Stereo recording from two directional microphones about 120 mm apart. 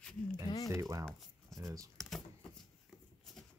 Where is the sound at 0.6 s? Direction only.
25° right (ahead or behind).